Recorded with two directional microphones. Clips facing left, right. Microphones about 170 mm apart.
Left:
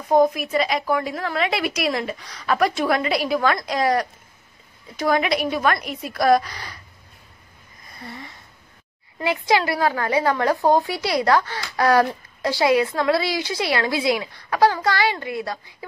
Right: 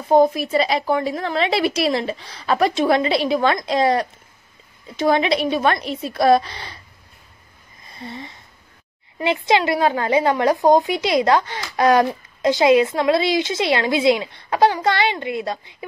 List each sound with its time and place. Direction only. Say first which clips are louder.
0.1 s a woman's voice: right 2 dB; 30° right (ahead or behind)
8.0 s a woman's voice: right 4 dB; 20° right (ahead or behind)